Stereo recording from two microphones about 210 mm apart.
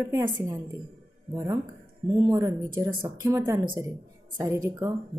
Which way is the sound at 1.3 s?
10° right (ahead or behind).